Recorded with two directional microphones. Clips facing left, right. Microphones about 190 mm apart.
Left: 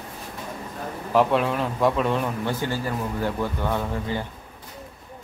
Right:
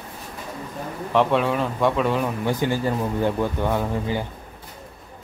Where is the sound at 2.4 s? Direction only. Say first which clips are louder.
Right 4 dB; 15° right (ahead or behind).